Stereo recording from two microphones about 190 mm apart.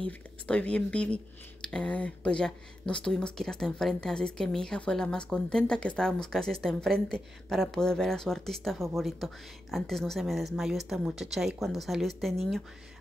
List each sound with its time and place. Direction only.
0.5 s a woman's voice: 5° left (ahead or behind)